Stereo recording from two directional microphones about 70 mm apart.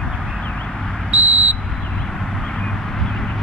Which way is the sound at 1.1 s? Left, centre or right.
Right.